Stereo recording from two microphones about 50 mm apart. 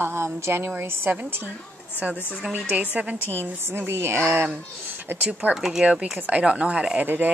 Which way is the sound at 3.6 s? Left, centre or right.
Right.